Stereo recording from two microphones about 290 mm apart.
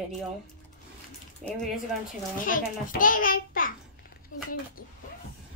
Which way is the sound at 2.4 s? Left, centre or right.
Left.